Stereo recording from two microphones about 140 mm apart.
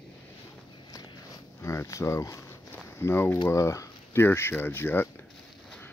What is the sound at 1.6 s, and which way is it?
Speech, 20° left (ahead or behind).